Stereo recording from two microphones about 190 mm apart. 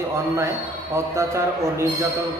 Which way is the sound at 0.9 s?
15° right (ahead or behind).